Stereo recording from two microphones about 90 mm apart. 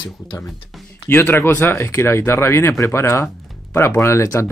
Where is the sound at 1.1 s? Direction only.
25° left (ahead or behind).